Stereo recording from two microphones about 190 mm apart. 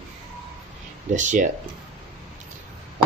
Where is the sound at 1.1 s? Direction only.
40° right (ahead or behind).